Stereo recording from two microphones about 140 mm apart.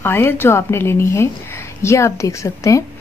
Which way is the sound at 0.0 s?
15° left (ahead or behind).